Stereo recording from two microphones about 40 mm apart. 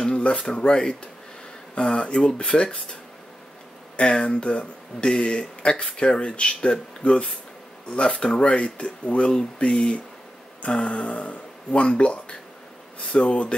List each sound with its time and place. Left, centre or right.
0.0 s speech: left
9.6 s speech: centre
10.9 s speech: left